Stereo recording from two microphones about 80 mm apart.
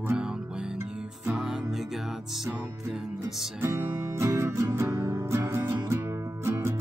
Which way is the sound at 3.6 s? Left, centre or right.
Right.